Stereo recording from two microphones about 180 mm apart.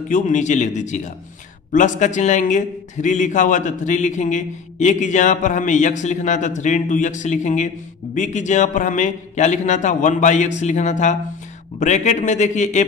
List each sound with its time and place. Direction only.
0.1 s a man's voice: 45° left (ahead or behind)